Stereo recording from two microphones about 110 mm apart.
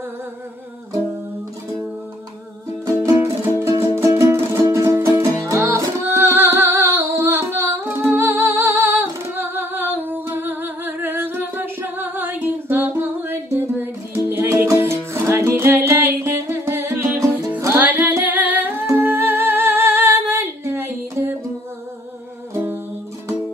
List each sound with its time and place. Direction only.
2.8 s music: 25° right (ahead or behind)
22.5 s music: 20° right (ahead or behind)